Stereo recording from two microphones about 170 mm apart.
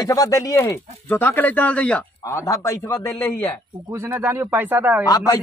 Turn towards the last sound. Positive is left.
turn(degrees=20)  # may be behind; listen again after turning